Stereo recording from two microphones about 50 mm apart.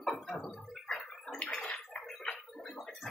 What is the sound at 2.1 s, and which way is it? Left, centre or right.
Gargling, centre.